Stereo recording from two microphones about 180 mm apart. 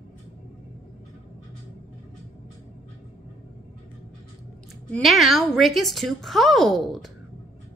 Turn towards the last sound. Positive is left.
turn(degrees=0)  # may be behind; listen again after turning